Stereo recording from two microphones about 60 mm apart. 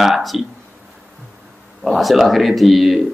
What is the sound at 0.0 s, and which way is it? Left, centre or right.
Speech, centre.